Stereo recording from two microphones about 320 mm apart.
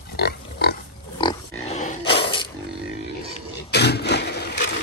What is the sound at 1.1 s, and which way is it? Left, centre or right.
Pig, centre.